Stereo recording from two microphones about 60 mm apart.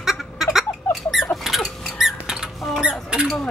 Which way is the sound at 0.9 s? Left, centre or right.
Centre.